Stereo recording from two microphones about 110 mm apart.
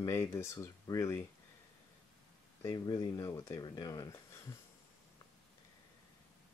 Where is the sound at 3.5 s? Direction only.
40° left (ahead or behind).